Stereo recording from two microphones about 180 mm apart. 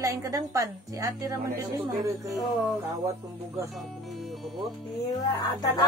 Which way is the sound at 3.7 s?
Centre (ahead or behind).